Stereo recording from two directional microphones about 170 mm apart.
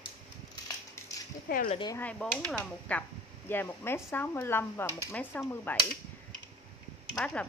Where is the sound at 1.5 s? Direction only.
60° left (ahead or behind).